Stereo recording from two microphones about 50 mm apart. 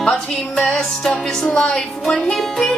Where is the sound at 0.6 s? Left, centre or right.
Centre.